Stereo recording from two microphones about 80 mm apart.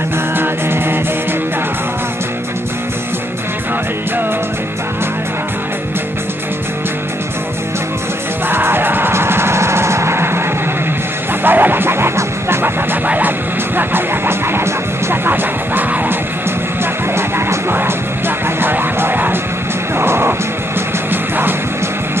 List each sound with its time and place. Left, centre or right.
0.4 s music: right
8.5 s music: right
11.4 s music: right